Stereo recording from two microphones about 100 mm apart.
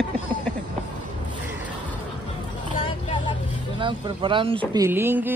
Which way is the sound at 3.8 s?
55° right (ahead or behind).